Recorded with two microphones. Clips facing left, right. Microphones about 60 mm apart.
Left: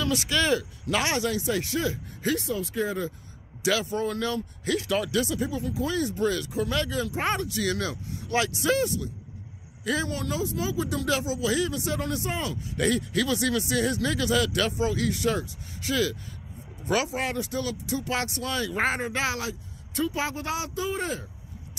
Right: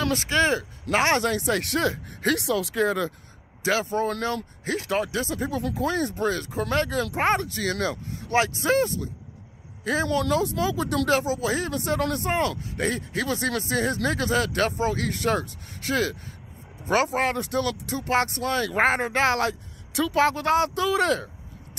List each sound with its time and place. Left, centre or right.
0.0 s speech: right
0.8 s speech: right
3.6 s speech: right
5.5 s speech: right
10.0 s speech: right
11.1 s speech: right
12.6 s speech: right
19.9 s a woman's voice: right
20.2 s speech: right